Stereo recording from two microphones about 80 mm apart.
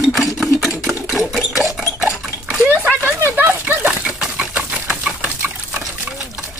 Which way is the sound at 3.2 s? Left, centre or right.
Right.